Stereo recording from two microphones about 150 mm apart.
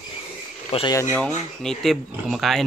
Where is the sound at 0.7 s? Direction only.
40° left (ahead or behind).